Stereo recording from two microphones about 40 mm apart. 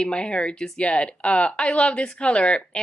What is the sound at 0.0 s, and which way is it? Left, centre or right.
Speech, left.